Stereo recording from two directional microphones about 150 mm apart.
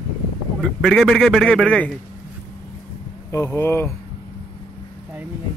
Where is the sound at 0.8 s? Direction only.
Centre (ahead or behind).